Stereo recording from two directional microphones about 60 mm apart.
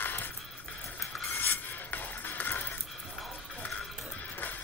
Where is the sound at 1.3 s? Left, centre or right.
Left.